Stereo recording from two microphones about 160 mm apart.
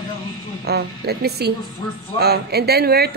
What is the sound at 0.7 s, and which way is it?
A woman's voice, 90° right.